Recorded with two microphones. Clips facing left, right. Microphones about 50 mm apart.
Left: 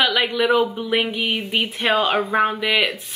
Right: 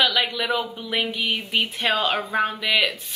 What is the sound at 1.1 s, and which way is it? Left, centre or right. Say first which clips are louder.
Speech: left 2 dB; left.